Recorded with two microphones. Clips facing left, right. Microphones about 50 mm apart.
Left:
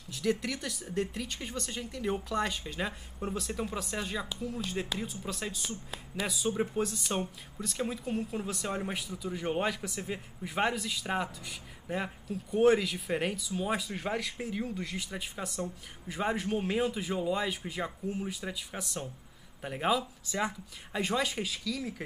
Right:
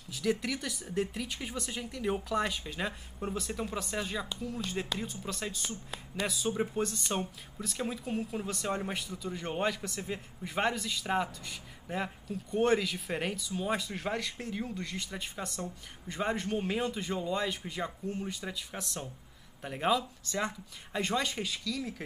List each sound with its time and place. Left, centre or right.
0.1 s speech: centre